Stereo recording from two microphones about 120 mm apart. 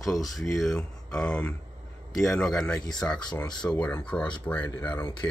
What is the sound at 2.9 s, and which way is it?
Speech, 5° left (ahead or behind).